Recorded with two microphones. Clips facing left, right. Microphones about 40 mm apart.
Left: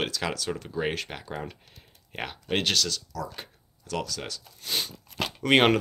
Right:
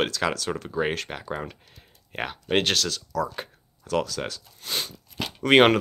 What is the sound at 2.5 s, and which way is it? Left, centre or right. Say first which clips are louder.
Speech: right 3 dB; centre.